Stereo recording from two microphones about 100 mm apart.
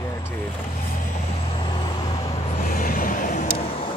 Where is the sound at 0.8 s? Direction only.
90° left; by 2.2 s 45° left (ahead or behind).